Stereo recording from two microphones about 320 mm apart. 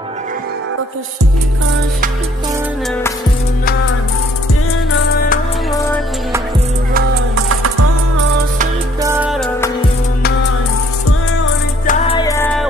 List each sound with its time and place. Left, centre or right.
7.3 s music: right
9.0 s music: centre
11.8 s music: left
12.2 s music: centre